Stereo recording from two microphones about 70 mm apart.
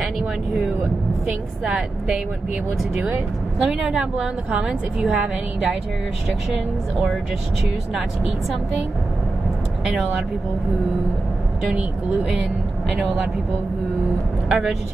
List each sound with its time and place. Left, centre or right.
0.2 s speech: right
1.6 s speech: centre
14.5 s speech: centre